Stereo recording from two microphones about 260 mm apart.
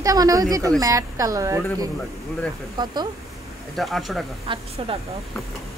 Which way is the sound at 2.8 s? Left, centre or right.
Centre.